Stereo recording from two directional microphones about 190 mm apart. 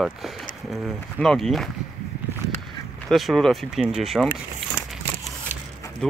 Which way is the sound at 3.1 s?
Centre (ahead or behind).